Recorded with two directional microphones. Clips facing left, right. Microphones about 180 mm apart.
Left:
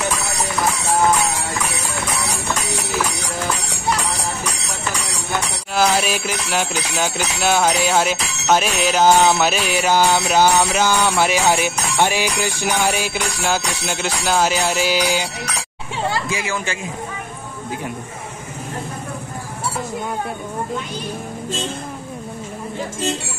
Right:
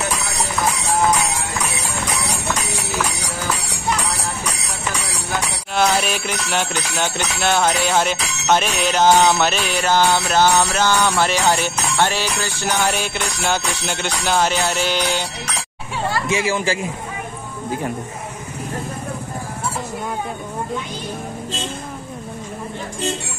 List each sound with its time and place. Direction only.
5.3 s music: centre (ahead or behind)
16.3 s speech: 25° right (ahead or behind)